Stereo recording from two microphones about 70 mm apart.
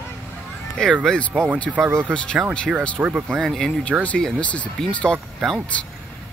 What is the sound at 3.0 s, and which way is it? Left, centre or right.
Speech, centre.